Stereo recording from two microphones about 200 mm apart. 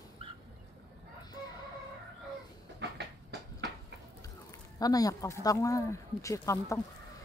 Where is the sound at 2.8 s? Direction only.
60° right (ahead or behind).